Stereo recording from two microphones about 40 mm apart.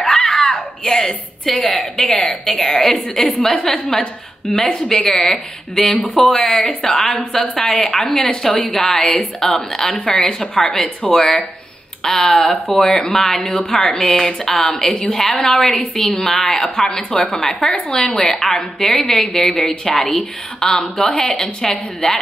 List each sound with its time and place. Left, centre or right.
0.0 s screaming: centre
1.4 s a woman's voice: centre
1.7 s a woman's voice: left
18.2 s a woman's voice: centre; by 21.4 s left
21.6 s a woman's voice: centre